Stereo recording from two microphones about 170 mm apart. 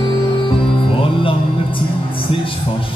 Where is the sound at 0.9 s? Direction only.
30° left (ahead or behind).